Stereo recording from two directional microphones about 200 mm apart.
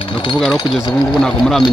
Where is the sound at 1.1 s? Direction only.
Centre (ahead or behind).